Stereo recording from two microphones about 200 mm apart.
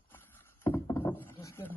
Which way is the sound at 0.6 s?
10° left (ahead or behind).